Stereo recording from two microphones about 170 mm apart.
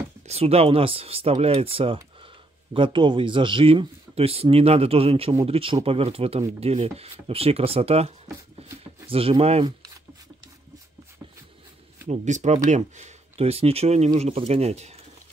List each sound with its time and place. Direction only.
0.3 s speech: 35° right (ahead or behind)
12.1 s speech: 45° right (ahead or behind)